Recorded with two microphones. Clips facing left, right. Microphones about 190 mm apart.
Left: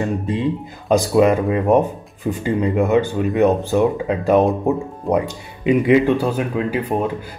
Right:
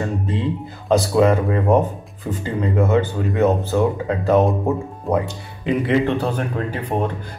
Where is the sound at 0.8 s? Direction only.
15° left (ahead or behind).